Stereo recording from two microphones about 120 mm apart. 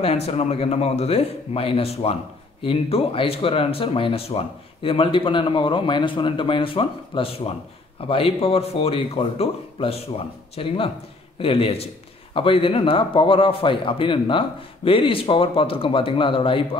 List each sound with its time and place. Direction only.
0.0 s speech: 60° left (ahead or behind)